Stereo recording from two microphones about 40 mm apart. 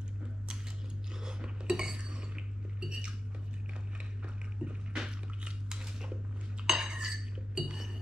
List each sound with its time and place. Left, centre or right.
1.2 s cutlery: centre
2.9 s dishes: centre
4.9 s a sound: centre
6.6 s cutlery: centre
7.6 s chink: centre